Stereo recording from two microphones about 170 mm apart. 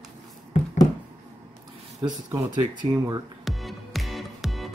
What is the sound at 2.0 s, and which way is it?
Speech, 20° right (ahead or behind).